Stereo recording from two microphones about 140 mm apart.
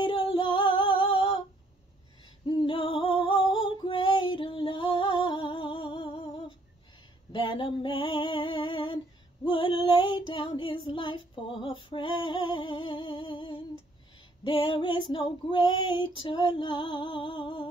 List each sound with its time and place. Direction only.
0.0 s female singing: 35° left (ahead or behind)
2.4 s female singing: 35° left (ahead or behind)
3.5 s music: 35° left (ahead or behind)
7.3 s female singing: 35° left (ahead or behind)